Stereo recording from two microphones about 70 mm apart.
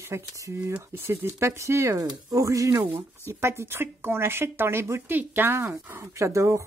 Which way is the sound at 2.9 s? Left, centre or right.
Right.